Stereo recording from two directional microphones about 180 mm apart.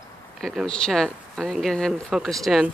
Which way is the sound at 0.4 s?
5° left (ahead or behind).